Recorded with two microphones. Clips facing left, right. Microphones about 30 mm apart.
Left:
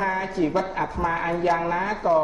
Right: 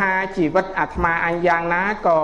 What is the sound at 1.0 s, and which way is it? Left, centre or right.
Speech, right.